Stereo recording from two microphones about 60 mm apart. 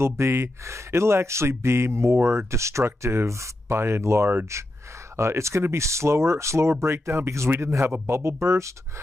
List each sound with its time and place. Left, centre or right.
0.0 s speech: right